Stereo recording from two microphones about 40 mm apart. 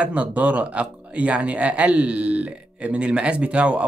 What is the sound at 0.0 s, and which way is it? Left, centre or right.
A man's voice, right.